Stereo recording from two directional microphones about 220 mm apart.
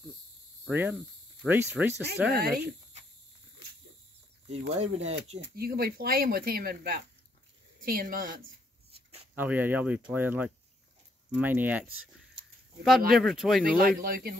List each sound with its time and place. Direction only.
0.7 s speech: 10° right (ahead or behind)
2.3 s speech: 45° right (ahead or behind)
4.5 s speech: 30° right (ahead or behind)
5.4 s speech: 45° right (ahead or behind)
9.3 s speech: 10° right (ahead or behind)
13.1 s speech: centre (ahead or behind)
13.7 s speech: 45° right (ahead or behind)